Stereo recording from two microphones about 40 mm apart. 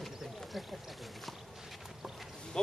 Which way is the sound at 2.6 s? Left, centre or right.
Centre.